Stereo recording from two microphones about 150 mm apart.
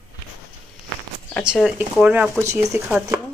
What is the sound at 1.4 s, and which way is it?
Speech, 5° right (ahead or behind).